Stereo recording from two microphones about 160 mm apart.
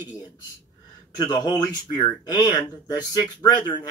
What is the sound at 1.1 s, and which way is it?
Speech, 25° left (ahead or behind).